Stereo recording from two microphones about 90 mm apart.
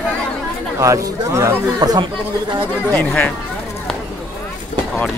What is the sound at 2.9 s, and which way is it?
Speech, 15° left (ahead or behind).